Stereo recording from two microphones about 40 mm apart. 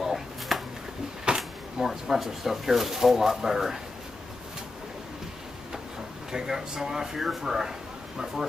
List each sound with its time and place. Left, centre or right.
0.0 s a sound: centre
1.2 s drawer open or close: centre
1.9 s speech: centre
6.3 s speech: centre